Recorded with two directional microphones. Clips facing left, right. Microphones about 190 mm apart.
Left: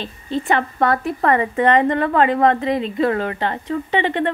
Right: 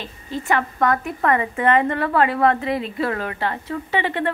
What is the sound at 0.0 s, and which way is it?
A woman's voice, 30° left (ahead or behind).